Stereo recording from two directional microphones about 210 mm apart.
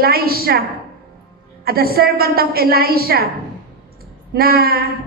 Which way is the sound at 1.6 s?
45° right (ahead or behind).